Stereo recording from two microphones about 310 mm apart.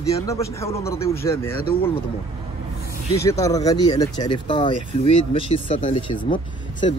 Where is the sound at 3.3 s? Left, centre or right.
Centre.